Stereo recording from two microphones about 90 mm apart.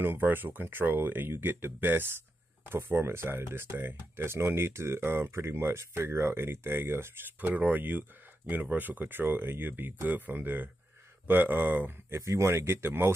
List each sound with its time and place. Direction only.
0.0 s speech: 25° right (ahead or behind)
12.2 s speech: 30° right (ahead or behind)